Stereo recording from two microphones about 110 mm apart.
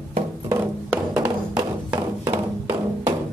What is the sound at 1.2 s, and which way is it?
Music, 35° right (ahead or behind).